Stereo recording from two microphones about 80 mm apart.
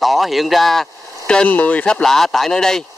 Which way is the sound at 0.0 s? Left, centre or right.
Centre.